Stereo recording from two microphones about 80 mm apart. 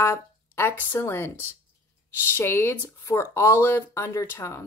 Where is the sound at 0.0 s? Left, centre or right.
Left.